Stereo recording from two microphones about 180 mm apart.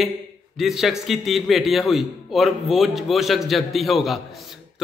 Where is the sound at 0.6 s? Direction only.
Centre (ahead or behind).